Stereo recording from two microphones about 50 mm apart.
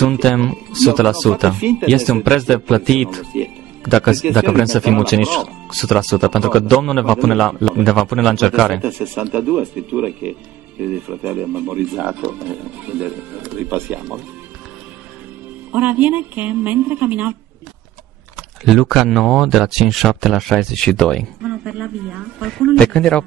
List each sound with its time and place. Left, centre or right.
0.0 s speech: centre
8.8 s speech: right
15.7 s speech: right
18.6 s a woman's voice: centre
21.4 s a woman's voice: centre
22.9 s speech: centre